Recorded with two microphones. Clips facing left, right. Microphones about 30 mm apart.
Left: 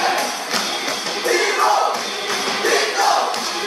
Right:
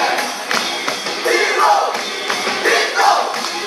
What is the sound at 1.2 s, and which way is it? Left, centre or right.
Music, right.